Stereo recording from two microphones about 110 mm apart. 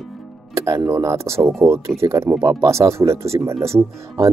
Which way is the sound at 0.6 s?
30° right (ahead or behind).